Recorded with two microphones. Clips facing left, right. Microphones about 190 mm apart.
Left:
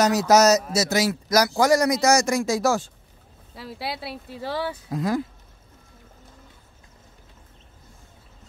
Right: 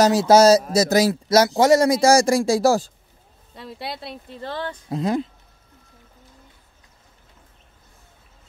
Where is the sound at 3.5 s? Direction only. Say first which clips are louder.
Even; 5° left (ahead or behind).